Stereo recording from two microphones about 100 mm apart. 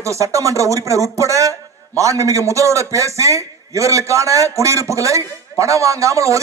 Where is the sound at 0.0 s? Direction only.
30° right (ahead or behind).